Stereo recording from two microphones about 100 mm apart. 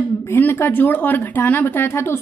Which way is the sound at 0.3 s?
20° left (ahead or behind).